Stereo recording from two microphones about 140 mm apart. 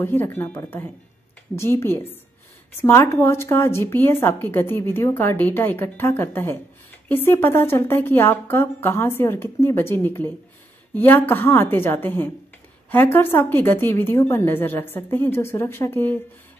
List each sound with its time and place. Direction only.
0.0 s speech: 15° left (ahead or behind)